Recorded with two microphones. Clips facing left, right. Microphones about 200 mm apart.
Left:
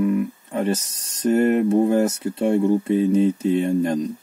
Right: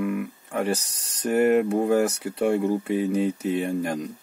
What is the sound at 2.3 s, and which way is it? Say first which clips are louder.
Speech: left 5 dB; 25° left (ahead or behind).